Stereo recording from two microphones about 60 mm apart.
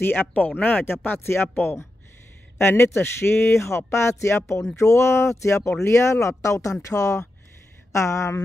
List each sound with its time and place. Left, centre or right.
0.0 s speech: left